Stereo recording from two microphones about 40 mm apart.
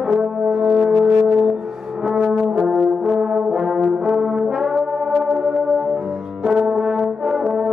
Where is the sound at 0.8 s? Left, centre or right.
Centre.